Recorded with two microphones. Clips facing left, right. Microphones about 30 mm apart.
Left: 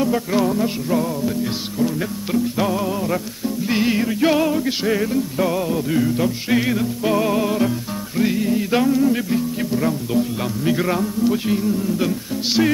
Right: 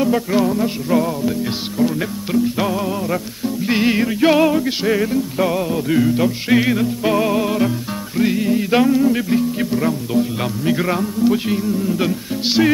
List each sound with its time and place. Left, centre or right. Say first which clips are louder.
0.0 s music: right 2 dB; centre
0.9 s music: right 5 dB; centre